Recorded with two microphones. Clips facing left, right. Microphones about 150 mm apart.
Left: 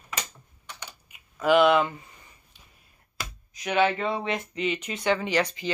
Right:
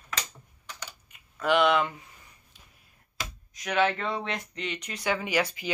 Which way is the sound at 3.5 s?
Centre (ahead or behind).